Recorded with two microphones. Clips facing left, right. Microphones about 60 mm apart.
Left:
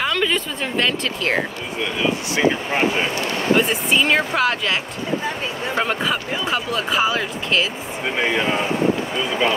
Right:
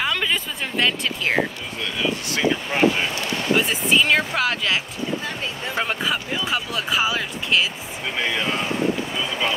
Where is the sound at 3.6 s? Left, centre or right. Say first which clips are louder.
Right 1 dB; centre.